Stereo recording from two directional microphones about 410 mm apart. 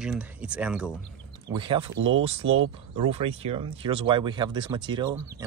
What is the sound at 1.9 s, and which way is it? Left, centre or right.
Speech, right.